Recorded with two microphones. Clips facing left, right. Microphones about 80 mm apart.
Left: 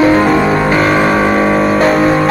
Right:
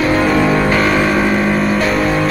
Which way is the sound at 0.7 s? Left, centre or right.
Centre.